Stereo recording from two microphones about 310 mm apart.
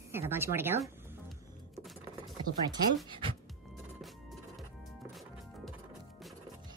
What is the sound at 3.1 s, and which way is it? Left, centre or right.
Speech, centre.